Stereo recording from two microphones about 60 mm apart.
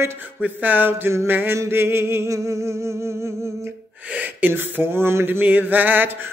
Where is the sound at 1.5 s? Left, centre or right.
Right.